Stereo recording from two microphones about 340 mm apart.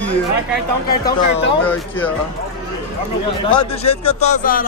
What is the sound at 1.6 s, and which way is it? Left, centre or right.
Speech, centre.